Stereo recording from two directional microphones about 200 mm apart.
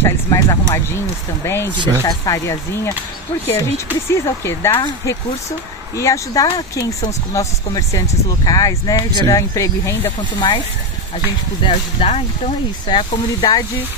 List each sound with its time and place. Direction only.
0.0 s speech: 15° left (ahead or behind)
4.1 s speech: 10° left (ahead or behind)
4.7 s speech: 20° left (ahead or behind)
11.6 s speech: 30° left (ahead or behind)